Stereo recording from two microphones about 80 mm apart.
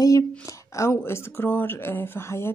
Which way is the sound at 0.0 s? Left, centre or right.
Left.